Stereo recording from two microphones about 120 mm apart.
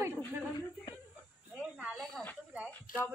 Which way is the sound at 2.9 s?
90° left.